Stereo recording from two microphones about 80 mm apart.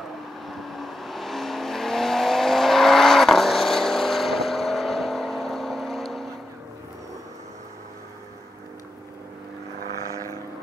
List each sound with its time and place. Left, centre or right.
0.5 s vehicle: centre